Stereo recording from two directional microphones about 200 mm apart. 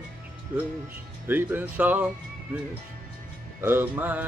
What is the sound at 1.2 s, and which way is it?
Speech, 10° right (ahead or behind).